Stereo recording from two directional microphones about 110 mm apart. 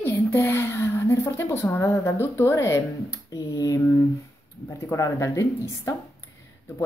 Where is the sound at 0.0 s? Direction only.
20° left (ahead or behind).